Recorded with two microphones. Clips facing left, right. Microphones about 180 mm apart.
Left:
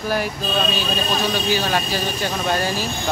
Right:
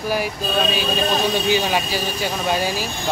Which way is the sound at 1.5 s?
15° right (ahead or behind).